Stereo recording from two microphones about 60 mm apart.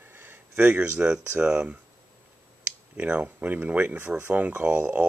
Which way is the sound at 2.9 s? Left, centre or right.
Right.